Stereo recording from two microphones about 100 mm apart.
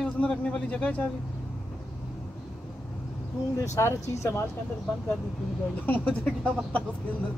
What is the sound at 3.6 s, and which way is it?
Speech, 30° left (ahead or behind).